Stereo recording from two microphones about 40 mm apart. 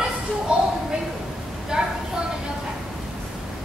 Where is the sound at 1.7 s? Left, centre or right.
Centre.